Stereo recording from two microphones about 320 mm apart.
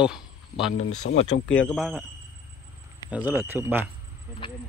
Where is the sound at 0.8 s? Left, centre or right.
Left.